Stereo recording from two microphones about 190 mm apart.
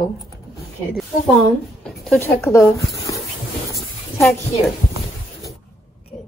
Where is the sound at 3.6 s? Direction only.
15° left (ahead or behind).